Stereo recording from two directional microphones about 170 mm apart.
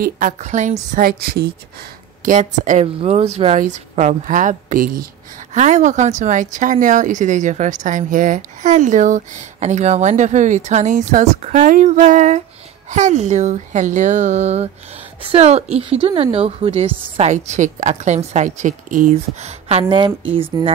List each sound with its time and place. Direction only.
0.0 s speech: 50° right (ahead or behind)
0.9 s a woman's voice: 60° right (ahead or behind)
2.2 s speech: 50° right (ahead or behind)
3.0 s speech: 40° right (ahead or behind); by 5.0 s 55° right (ahead or behind)
5.5 s a woman's voice: 45° right (ahead or behind)